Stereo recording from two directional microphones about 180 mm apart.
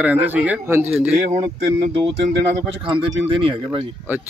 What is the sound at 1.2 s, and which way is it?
Speech, 40° right (ahead or behind).